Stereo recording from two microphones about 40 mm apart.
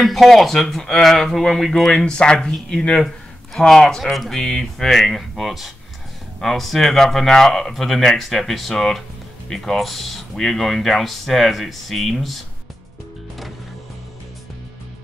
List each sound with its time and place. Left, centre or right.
0.0 s speech: centre
1.4 s speech: centre
4.4 s speech: centre
5.3 s speech: centre